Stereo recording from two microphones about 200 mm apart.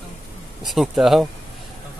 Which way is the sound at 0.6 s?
Centre (ahead or behind).